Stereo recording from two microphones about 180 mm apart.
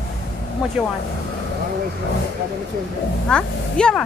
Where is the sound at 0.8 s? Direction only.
5° right (ahead or behind).